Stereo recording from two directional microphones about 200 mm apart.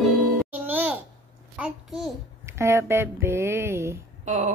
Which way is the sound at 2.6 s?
15° right (ahead or behind).